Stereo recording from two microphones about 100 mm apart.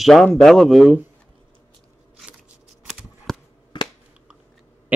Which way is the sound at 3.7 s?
50° left (ahead or behind).